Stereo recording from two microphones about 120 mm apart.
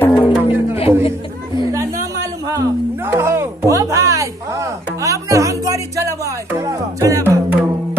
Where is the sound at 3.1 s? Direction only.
20° right (ahead or behind).